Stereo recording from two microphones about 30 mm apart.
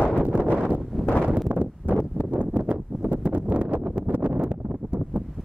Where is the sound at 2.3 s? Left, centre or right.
Right.